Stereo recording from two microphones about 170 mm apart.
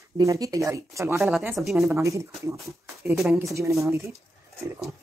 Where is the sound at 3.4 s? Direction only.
20° right (ahead or behind).